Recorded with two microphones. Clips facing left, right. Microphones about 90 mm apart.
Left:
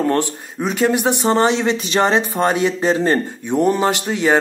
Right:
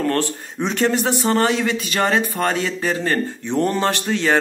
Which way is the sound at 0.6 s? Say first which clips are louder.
Left 2 dB; 5° left (ahead or behind).